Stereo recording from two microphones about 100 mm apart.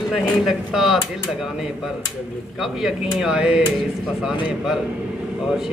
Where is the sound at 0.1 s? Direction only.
Centre (ahead or behind).